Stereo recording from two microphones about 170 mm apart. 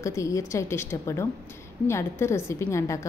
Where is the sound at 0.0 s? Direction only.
20° left (ahead or behind).